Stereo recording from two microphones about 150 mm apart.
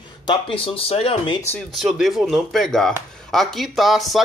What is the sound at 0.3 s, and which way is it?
Speech, 35° left (ahead or behind).